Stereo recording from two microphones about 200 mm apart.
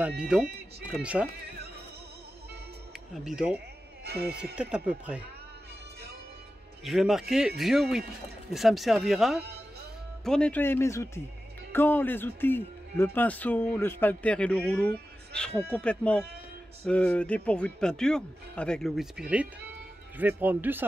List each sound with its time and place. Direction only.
0.2 s speech: 5° right (ahead or behind)
3.3 s speech: 5° right (ahead or behind)
6.8 s speech: centre (ahead or behind)